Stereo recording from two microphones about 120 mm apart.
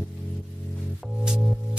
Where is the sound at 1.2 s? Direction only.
5° right (ahead or behind).